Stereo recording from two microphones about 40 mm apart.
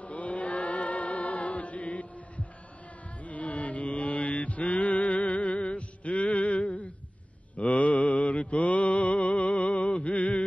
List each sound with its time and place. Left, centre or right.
0.0 s chant: left
3.3 s mantra: left
10.1 s a sound: left